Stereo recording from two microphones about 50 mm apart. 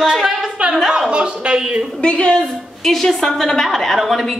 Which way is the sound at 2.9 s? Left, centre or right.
Centre.